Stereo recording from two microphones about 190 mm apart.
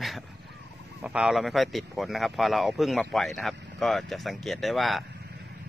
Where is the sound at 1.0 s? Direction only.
5° right (ahead or behind).